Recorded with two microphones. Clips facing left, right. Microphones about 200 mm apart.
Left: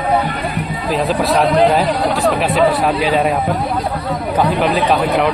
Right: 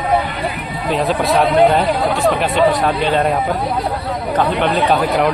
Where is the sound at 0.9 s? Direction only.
Centre (ahead or behind).